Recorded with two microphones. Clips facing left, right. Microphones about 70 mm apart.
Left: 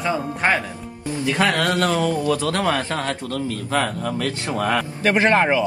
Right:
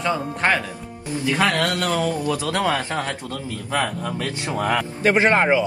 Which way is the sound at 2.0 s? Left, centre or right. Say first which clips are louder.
Left 3 dB; centre.